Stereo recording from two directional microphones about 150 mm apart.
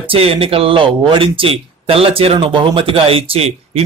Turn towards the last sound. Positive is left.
turn(degrees=-40)  # may be behind; listen again after turning